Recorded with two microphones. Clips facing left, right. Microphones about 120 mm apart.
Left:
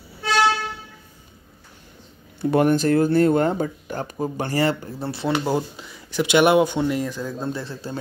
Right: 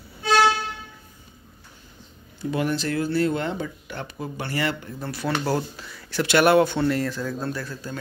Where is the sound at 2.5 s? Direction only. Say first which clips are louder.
Left 8 dB; 50° left (ahead or behind); by 5.3 s 30° left (ahead or behind).